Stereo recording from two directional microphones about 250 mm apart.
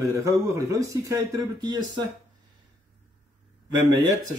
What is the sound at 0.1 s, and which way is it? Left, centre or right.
Speech, centre.